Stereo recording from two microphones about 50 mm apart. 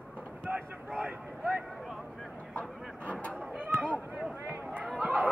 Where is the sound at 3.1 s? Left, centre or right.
Left.